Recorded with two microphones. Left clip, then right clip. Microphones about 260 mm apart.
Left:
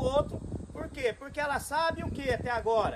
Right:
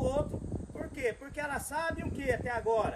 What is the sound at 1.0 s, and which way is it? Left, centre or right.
Speech, centre.